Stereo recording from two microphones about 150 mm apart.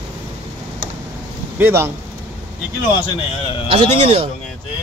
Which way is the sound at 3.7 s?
35° right (ahead or behind).